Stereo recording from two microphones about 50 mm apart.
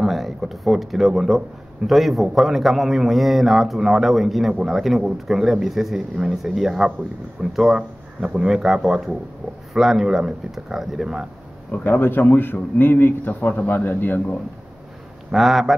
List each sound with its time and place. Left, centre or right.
0.0 s a man's voice: centre
8.2 s speech: centre
11.7 s a man's voice: left
15.3 s a man's voice: centre